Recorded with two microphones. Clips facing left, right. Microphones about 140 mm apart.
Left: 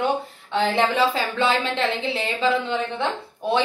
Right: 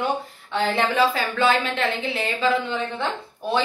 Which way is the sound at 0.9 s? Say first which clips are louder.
Even; 25° left (ahead or behind).